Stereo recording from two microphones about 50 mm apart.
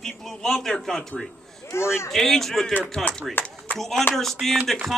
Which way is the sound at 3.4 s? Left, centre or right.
Left.